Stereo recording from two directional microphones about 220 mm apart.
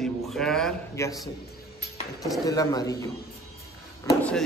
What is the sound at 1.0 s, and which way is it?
Speech, 15° left (ahead or behind).